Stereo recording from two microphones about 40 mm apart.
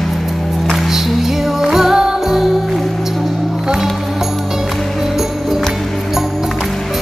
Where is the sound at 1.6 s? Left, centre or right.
Centre.